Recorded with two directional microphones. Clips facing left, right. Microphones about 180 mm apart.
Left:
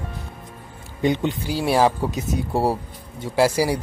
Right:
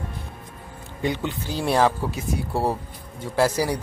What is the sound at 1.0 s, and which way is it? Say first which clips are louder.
Speech: left 5 dB; 20° left (ahead or behind).